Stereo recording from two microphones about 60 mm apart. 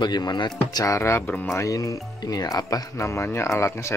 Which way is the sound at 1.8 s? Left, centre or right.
Left.